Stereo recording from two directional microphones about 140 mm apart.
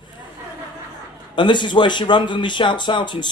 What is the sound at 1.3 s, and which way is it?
Speech, 35° left (ahead or behind).